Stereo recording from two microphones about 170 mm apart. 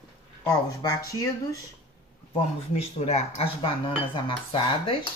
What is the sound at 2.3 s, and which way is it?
Speech, 40° left (ahead or behind).